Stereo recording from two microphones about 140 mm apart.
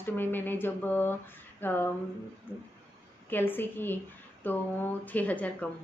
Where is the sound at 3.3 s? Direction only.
15° left (ahead or behind).